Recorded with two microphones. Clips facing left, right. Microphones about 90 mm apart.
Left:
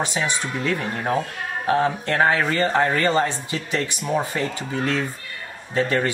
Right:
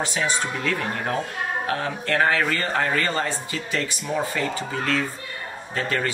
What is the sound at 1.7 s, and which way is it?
Speech, 20° left (ahead or behind).